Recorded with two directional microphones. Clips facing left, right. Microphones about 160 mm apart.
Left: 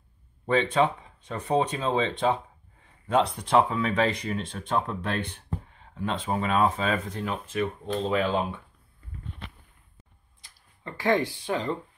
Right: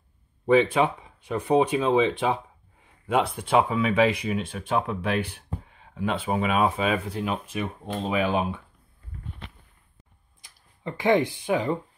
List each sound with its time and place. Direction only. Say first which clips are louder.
0.5 s speech: right 3 dB; 10° right (ahead or behind)
10.4 s speech: right 6 dB; 15° right (ahead or behind)